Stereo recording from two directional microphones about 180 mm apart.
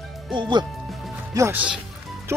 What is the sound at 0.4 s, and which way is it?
Speech, 25° right (ahead or behind).